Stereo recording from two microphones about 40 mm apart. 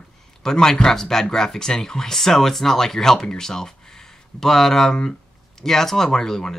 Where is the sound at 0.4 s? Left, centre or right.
Centre.